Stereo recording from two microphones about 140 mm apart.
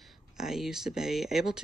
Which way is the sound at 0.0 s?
5° right (ahead or behind).